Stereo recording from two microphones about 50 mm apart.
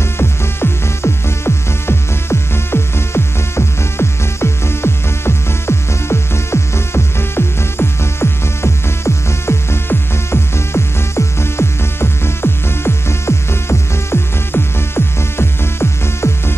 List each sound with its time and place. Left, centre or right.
0.2 s music: left